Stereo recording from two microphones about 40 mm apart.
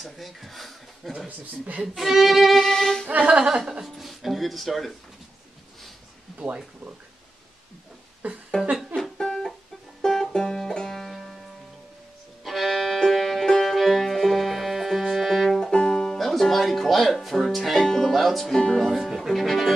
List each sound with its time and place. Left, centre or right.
0.0 s speech: centre
2.0 s violin: centre
3.3 s speech: centre
3.8 s speech: centre
6.3 s speech: right
8.2 s speech: right
9.2 s music: centre
10.7 s banjo: centre
12.4 s music: centre
18.6 s music: centre
18.9 s music: centre